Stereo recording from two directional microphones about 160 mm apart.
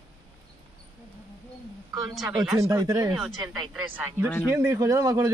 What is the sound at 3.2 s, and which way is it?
Speech, 5° right (ahead or behind).